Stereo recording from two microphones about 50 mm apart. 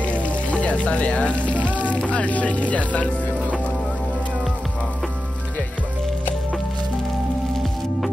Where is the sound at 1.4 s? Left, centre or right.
Right.